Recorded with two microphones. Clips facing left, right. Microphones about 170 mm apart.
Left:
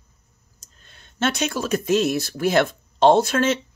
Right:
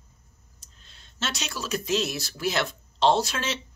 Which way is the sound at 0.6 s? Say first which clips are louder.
Left 5 dB; 50° left (ahead or behind).